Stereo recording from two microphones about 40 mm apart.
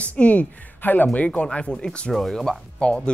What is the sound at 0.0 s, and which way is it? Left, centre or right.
Speech, left.